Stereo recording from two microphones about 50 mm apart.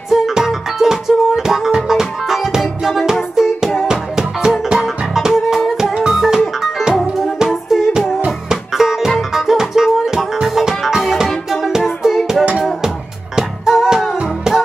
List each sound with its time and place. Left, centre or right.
0.1 s music: centre
13.4 s music: centre
14.1 s music: centre